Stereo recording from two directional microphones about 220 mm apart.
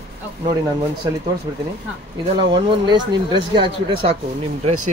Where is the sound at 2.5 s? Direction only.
20° right (ahead or behind).